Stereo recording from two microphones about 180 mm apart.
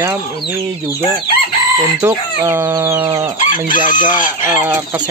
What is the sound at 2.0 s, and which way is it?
Speech, 15° right (ahead or behind).